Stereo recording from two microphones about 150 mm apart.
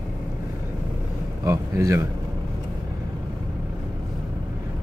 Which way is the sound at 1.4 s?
20° right (ahead or behind).